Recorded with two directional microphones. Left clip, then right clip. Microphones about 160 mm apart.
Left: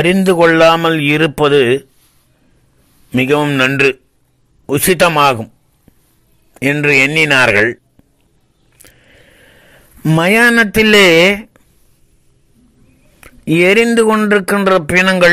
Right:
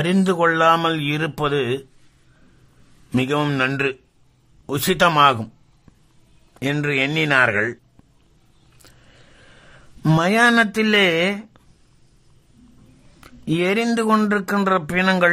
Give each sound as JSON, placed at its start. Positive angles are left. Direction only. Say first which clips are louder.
{"t": 0.0, "sound": "speech", "louder": "left 9 dB", "side_deg": 25}
{"t": 3.2, "sound": "speech", "louder": "left 8 dB", "side_deg": 20}
{"t": 6.5, "sound": "a man's voice", "louder": "left 11 dB", "side_deg": 20}
{"t": 8.8, "sound": "a sound", "louder": "left 7 dB", "side_deg": 15}
{"t": 10.1, "sound": "speech", "louder": "left 6 dB", "side_deg": 20}
{"t": 13.2, "sound": "speech", "louder": "left 10 dB", "side_deg": 25}
{"t": 14.3, "sound": "speech", "louder": "left 8 dB", "side_deg": 30}